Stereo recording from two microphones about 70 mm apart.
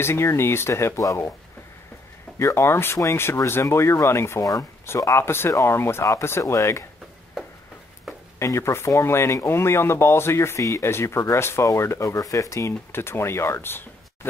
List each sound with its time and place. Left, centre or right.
0.0 s speech: left
2.3 s speech: left
8.4 s speech: left
12.9 s speech: left